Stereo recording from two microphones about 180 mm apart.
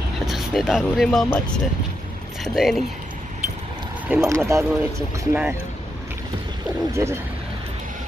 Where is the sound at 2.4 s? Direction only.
Centre (ahead or behind).